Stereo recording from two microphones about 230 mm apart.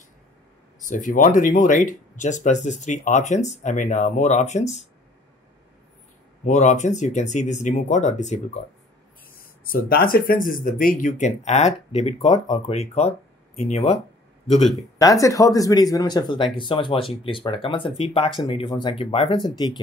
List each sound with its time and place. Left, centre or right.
0.8 s speech: left
6.4 s speech: left
9.7 s speech: left
15.0 s speech: centre